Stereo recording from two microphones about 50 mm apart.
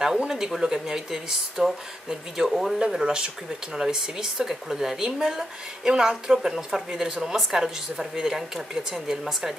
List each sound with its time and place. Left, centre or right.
0.3 s speech: centre